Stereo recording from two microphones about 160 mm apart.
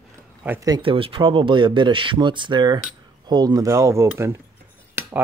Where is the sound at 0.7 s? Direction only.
30° right (ahead or behind).